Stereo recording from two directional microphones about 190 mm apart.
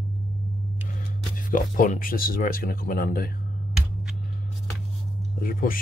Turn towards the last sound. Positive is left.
turn(degrees=50)  # may be behind; listen again after turning